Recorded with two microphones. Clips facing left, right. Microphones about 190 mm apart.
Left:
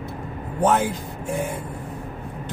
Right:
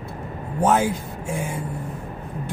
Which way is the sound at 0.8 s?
60° left (ahead or behind).